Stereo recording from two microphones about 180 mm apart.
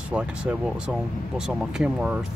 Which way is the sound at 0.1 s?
5° right (ahead or behind).